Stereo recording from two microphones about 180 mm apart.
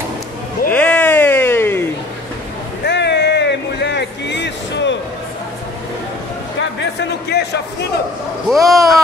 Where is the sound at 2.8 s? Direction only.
70° left (ahead or behind).